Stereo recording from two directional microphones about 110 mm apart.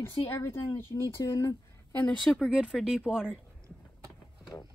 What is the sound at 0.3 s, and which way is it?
Speech, 20° left (ahead or behind).